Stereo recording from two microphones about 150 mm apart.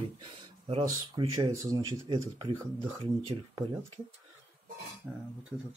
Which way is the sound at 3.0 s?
40° right (ahead or behind).